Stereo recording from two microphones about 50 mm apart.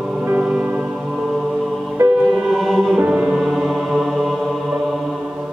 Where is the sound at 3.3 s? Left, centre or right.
Centre.